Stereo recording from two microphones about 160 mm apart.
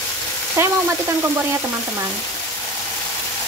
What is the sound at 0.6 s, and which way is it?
Frying, 15° right (ahead or behind).